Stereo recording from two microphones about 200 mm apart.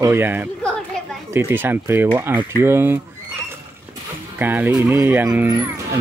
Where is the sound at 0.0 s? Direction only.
10° right (ahead or behind).